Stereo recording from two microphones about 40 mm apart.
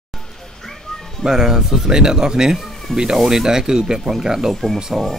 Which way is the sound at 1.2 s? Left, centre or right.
Centre.